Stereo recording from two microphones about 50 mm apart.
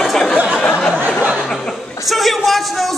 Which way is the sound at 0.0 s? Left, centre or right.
Centre.